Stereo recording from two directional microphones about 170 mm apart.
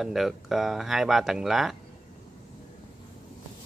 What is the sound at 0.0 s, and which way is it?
Speech, centre (ahead or behind).